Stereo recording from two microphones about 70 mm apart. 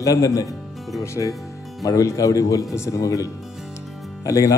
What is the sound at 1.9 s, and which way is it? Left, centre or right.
Speech, left.